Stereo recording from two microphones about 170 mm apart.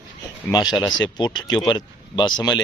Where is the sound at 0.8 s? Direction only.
25° left (ahead or behind).